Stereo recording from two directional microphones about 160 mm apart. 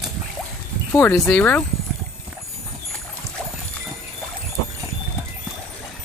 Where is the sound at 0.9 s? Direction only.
15° left (ahead or behind).